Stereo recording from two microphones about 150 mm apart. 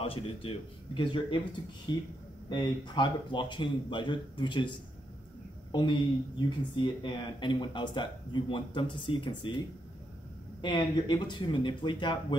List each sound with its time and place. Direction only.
0.0 s speech: 40° left (ahead or behind)
10.6 s speech: 30° left (ahead or behind)